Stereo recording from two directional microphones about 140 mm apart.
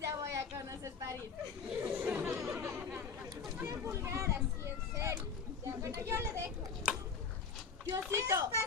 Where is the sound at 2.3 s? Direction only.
Centre (ahead or behind).